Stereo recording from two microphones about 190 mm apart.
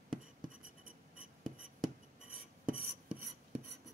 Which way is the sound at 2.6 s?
5° right (ahead or behind).